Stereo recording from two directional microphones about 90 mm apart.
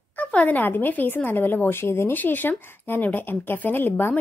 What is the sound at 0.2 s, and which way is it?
A woman's voice, 15° left (ahead or behind).